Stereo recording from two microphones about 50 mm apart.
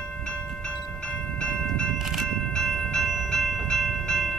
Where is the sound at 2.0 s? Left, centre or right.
Centre.